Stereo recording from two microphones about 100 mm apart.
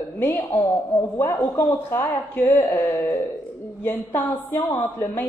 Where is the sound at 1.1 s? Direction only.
20° left (ahead or behind).